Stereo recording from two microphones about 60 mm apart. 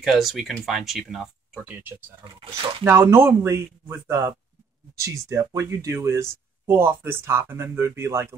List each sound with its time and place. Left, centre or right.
0.0 s speech: centre
2.8 s speech: right
4.9 s speech: right